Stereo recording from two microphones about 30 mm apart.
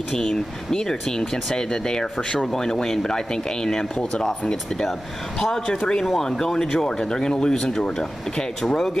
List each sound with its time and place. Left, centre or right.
0.1 s speech: centre
6.2 s speech: left